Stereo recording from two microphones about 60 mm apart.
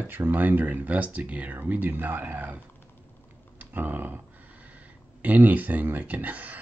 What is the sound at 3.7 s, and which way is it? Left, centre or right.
Speech, right.